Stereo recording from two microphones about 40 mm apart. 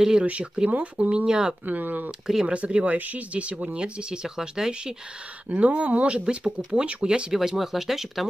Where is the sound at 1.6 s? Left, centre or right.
Right.